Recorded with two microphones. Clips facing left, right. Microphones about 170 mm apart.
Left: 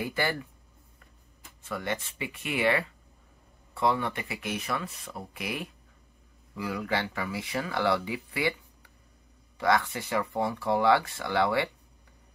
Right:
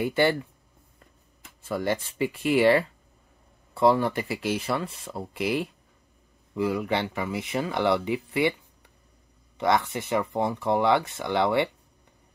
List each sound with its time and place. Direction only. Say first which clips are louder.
0.0 s speech: right 7 dB; 25° right (ahead or behind)
1.6 s speech: right 6 dB; 35° right (ahead or behind)
9.6 s speech: right 2 dB; 20° right (ahead or behind)